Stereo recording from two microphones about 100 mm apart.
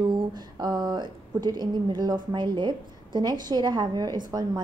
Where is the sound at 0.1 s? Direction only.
45° right (ahead or behind).